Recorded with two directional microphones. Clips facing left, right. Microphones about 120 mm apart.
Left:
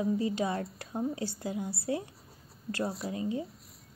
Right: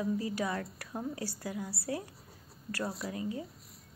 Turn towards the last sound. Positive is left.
turn(degrees=25)  # may be behind; listen again after turning